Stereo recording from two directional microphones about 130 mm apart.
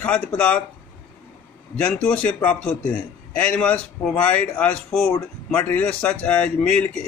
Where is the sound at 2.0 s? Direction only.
10° left (ahead or behind).